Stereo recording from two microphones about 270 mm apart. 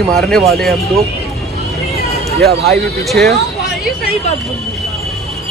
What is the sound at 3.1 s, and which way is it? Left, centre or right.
Speech, centre.